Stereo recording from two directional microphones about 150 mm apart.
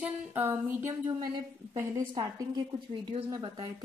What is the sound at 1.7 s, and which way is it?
Speech, 20° right (ahead or behind).